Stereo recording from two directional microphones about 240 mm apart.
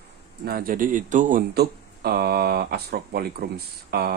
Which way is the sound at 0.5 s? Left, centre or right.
Right.